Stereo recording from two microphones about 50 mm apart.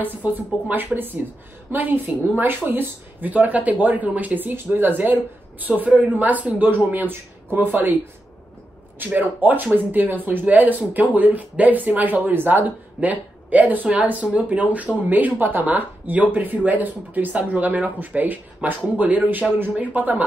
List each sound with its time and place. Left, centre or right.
0.0 s speech: right
9.0 s speech: right